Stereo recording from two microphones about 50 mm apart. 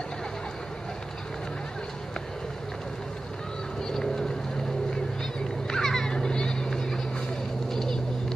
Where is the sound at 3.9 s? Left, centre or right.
Centre.